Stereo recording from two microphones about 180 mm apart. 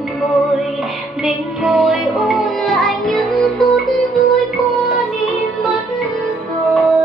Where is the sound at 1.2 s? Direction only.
Centre (ahead or behind).